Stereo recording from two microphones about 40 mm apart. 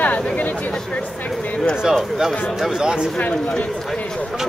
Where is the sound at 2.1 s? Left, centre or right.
Centre.